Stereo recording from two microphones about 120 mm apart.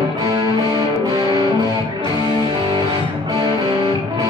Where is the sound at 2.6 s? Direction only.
40° right (ahead or behind).